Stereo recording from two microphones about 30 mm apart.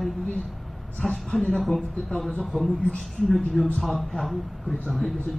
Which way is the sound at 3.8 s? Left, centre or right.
Centre.